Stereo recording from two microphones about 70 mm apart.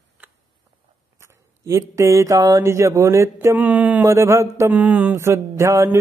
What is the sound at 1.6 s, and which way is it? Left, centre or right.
Mantra, right.